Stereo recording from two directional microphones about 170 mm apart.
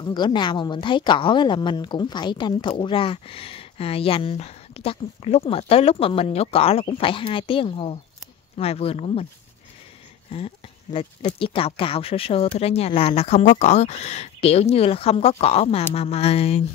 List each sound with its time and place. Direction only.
0.0 s a woman's voice: 25° left (ahead or behind)
10.3 s a woman's voice: 35° left (ahead or behind)